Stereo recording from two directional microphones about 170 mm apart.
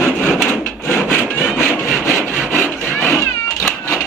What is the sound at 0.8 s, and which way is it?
Wood, 15° left (ahead or behind).